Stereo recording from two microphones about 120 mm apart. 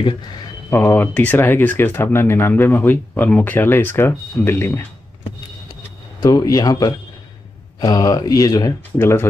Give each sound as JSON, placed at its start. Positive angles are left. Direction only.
{"t": 0.7, "sound": "speech", "side_deg": 20}
{"t": 6.2, "sound": "speech", "side_deg": 30}
{"t": 8.9, "sound": "speech", "side_deg": 20}